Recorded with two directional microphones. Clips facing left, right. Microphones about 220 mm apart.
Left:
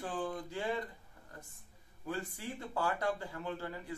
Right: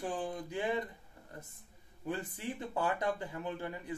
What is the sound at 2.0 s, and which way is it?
Speech, 20° right (ahead or behind).